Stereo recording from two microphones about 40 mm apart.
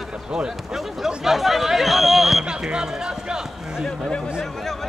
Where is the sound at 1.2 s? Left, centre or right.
Centre.